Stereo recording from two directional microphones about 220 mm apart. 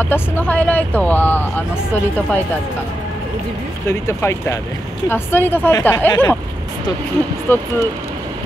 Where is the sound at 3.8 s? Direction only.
10° left (ahead or behind).